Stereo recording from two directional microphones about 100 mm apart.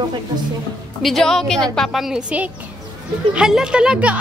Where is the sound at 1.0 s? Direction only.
5° left (ahead or behind).